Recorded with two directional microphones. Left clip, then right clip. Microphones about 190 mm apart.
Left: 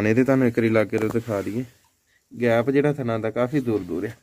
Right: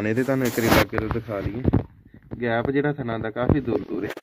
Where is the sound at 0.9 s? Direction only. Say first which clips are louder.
Left 3 dB; 20° left (ahead or behind).